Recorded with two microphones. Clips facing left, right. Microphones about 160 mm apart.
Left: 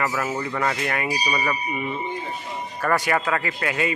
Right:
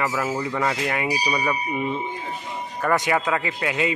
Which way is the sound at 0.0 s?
5° right (ahead or behind).